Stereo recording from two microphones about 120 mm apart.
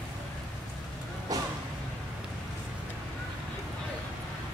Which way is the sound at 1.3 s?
30° right (ahead or behind).